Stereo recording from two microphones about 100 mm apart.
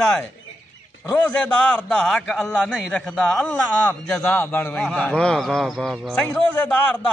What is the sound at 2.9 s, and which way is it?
A man's voice, 10° left (ahead or behind).